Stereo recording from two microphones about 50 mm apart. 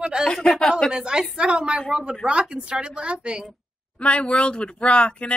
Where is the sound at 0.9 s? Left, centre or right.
Centre.